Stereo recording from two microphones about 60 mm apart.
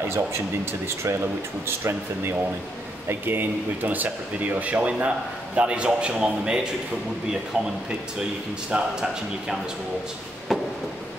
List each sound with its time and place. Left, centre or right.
0.0 s speech: right
3.1 s speech: right; by 9.6 s centre
10.5 s a sound: centre